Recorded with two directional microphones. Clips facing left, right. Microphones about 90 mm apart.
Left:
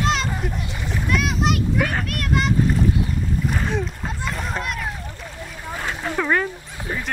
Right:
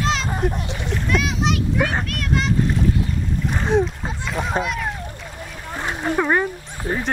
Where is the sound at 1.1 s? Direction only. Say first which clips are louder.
Even; centre (ahead or behind).